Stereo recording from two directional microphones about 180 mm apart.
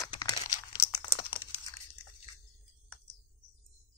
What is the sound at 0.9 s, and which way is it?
Crumpling, 30° left (ahead or behind).